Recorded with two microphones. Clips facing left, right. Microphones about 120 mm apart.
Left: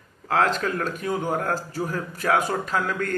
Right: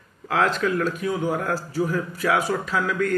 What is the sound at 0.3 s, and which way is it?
A man's voice, 40° left (ahead or behind).